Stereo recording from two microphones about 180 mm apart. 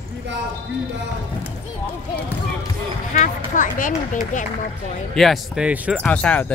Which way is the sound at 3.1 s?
50° left (ahead or behind).